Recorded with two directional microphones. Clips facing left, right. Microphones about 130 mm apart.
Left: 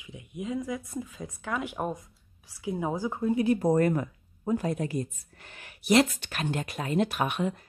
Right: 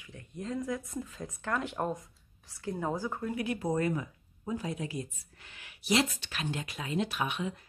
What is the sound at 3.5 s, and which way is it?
A woman's voice, 50° left (ahead or behind).